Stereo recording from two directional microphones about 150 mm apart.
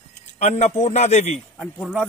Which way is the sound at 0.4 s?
50° left (ahead or behind).